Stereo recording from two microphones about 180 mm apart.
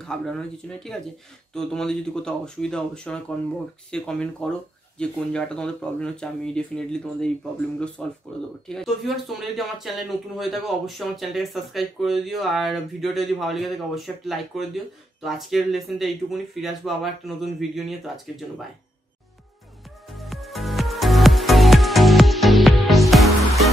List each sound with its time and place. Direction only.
0.0 s speech: 5° left (ahead or behind)
20.2 s music: centre (ahead or behind)